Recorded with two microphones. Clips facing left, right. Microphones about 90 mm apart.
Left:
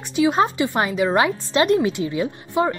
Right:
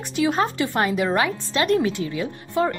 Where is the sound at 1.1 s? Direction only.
25° left (ahead or behind).